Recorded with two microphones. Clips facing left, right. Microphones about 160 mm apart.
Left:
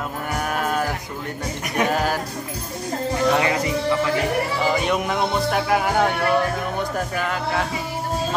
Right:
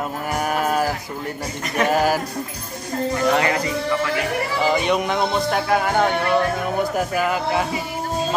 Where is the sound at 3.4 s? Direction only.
20° left (ahead or behind).